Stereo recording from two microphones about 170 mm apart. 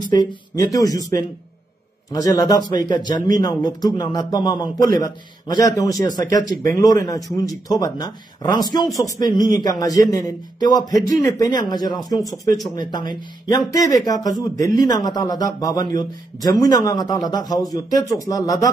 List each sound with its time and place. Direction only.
0.0 s a man's voice: 25° left (ahead or behind)